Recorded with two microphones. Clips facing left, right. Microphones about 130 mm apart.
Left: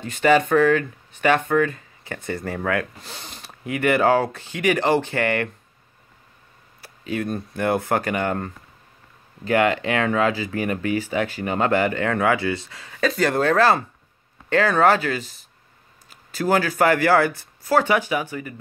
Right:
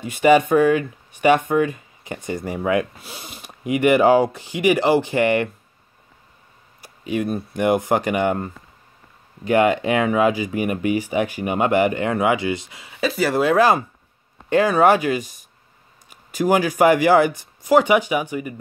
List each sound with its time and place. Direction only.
0.0 s speech: 15° right (ahead or behind)
6.8 s speech: 15° right (ahead or behind)
9.5 s speech: 15° right (ahead or behind)